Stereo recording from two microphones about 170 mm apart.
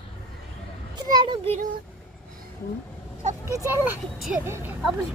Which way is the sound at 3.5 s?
15° right (ahead or behind).